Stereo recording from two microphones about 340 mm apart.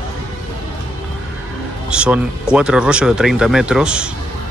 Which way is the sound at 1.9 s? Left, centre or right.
Centre.